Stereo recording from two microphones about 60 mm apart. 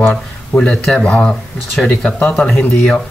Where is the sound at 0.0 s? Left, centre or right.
Centre.